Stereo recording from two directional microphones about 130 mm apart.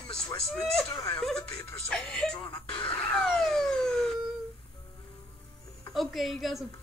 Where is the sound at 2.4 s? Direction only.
35° left (ahead or behind).